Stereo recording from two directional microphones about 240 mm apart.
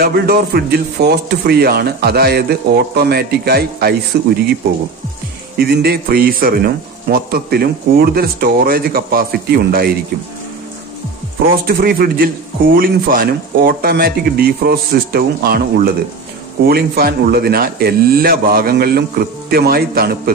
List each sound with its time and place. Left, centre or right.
0.0 s speech: right
5.6 s speech: right
11.6 s speech: right